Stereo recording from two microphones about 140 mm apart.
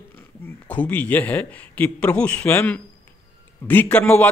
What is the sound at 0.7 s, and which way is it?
A man's voice, 10° left (ahead or behind).